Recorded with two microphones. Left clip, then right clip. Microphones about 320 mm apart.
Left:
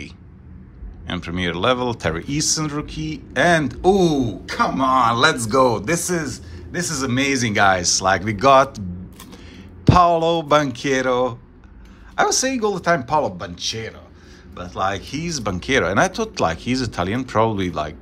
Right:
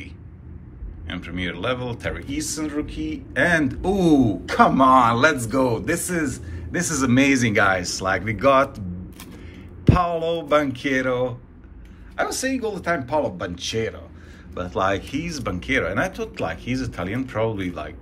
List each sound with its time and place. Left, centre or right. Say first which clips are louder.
1.0 s speech: left 5 dB; centre
13.4 s speech: right 1 dB; centre